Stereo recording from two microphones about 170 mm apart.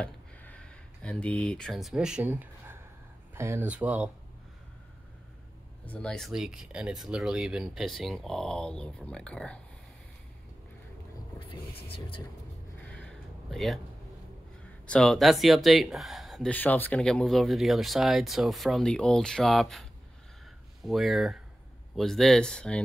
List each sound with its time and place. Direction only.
0.0 s a sound: 10° left (ahead or behind); by 2.8 s 10° right (ahead or behind)
3.3 s speech: 15° right (ahead or behind)
5.9 s speech: 5° left (ahead or behind)
11.9 s speech: 30° left (ahead or behind)
12.8 s a sound: 5° left (ahead or behind)
14.9 s speech: 5° left (ahead or behind)